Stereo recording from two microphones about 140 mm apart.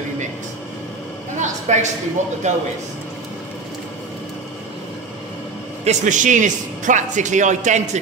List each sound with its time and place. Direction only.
1.4 s a sound: 60° right (ahead or behind)
2.4 s a man's voice: 55° right (ahead or behind)
5.9 s a man's voice: 65° right (ahead or behind)